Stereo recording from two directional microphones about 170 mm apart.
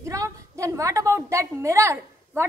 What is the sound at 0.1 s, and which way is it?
A woman's voice, 20° right (ahead or behind).